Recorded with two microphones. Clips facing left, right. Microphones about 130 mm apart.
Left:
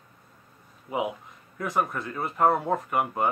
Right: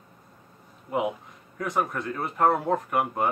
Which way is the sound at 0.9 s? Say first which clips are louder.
Right 2 dB; 5° left (ahead or behind).